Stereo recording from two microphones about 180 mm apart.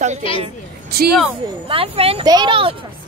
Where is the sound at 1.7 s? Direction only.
30° right (ahead or behind).